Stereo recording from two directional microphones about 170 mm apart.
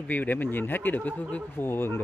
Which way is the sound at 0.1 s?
10° left (ahead or behind).